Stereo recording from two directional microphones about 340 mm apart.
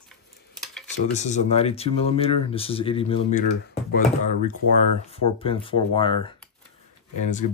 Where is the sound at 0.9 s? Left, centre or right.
Left.